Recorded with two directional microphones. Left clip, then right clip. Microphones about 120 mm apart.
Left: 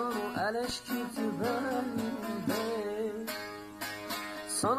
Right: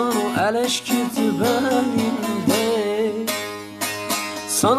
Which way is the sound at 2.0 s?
40° right (ahead or behind).